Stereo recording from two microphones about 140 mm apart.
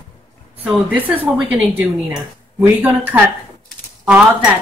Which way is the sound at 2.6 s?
15° right (ahead or behind).